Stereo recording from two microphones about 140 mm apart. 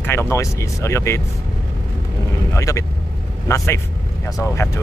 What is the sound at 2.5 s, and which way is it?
Speech, 20° left (ahead or behind).